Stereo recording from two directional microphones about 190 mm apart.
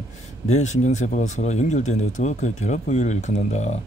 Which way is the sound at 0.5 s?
40° left (ahead or behind).